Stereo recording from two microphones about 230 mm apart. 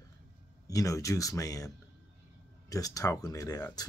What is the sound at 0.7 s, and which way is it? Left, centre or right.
Speech, centre.